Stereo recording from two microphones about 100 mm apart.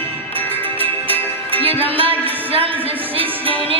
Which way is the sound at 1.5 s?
70° right (ahead or behind).